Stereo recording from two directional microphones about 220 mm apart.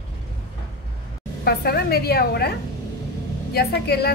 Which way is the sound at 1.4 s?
45° left (ahead or behind).